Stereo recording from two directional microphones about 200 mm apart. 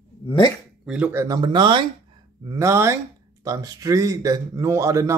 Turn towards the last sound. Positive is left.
turn(degrees=-15)  # may be behind; listen again after turning